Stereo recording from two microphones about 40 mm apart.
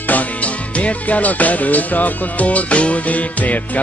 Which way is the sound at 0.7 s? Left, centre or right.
Left.